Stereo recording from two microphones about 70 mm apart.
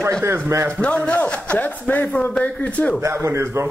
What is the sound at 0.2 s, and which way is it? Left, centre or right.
Speech, right.